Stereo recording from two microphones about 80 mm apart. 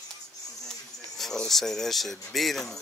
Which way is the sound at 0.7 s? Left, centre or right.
Centre.